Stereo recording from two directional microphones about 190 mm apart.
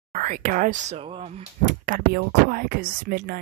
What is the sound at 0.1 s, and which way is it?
Speech, 45° right (ahead or behind).